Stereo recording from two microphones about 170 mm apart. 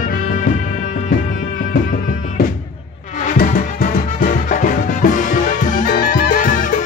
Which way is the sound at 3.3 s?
55° left (ahead or behind).